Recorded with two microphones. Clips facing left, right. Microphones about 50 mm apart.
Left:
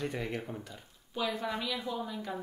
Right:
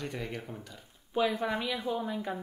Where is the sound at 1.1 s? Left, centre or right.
Right.